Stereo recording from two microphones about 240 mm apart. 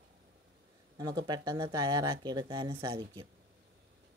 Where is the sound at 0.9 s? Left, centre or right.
Centre.